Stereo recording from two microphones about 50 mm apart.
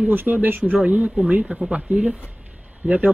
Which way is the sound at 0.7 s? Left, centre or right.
Right.